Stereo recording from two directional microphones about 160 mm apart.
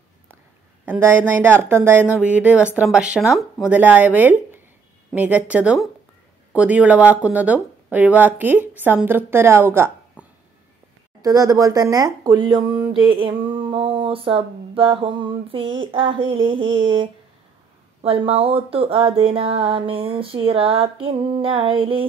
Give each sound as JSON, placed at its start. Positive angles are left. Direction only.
{"t": 0.8, "sound": "speech", "side_deg": -10}
{"t": 10.2, "sound": "a sound", "side_deg": -10}
{"t": 11.2, "sound": "speech", "side_deg": -20}